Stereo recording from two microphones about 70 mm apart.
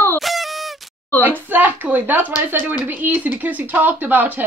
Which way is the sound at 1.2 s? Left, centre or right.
Right.